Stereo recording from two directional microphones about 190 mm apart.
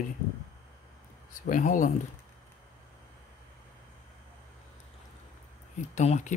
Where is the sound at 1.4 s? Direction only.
45° left (ahead or behind).